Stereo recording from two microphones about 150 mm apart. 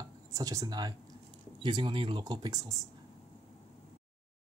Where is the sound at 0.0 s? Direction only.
25° right (ahead or behind).